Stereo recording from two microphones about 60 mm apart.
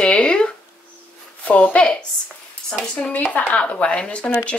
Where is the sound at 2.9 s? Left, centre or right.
Left.